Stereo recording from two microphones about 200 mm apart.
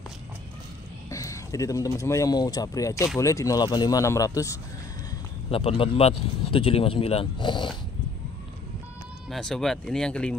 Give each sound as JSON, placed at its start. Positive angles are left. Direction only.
{"t": 1.1, "sound": "speech", "side_deg": 15}
{"t": 5.5, "sound": "speech", "side_deg": 30}
{"t": 9.3, "sound": "speech", "side_deg": 5}